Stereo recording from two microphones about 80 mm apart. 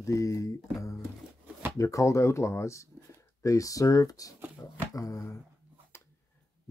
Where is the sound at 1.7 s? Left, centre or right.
Left.